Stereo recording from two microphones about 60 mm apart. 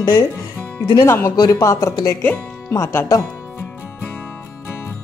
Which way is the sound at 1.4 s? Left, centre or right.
Left.